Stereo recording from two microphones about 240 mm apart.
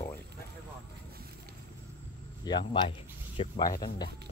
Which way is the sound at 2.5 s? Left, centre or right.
Centre.